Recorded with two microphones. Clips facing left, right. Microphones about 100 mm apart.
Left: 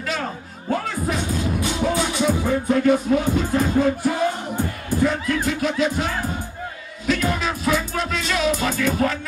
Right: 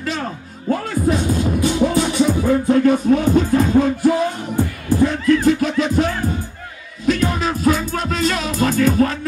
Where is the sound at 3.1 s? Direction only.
45° right (ahead or behind).